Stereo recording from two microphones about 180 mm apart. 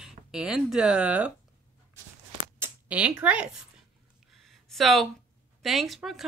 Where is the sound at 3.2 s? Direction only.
5° right (ahead or behind).